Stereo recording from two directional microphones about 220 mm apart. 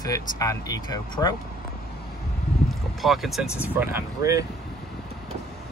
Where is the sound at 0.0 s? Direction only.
15° left (ahead or behind).